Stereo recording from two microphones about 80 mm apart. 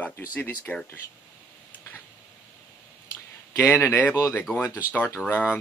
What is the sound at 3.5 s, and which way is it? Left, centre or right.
Speech, left.